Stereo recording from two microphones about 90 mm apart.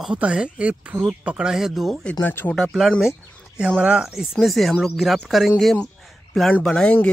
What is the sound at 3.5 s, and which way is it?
Speech, 10° right (ahead or behind).